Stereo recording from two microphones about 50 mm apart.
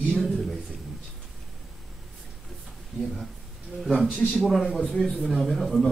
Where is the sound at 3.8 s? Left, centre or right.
Centre.